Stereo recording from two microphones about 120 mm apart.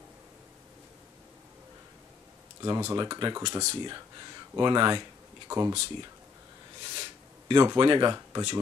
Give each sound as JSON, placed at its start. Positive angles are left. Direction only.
{"t": 2.6, "sound": "speech", "side_deg": -25}
{"t": 4.6, "sound": "speech", "side_deg": -40}
{"t": 5.5, "sound": "speech", "side_deg": -25}
{"t": 7.0, "sound": "rub", "side_deg": -40}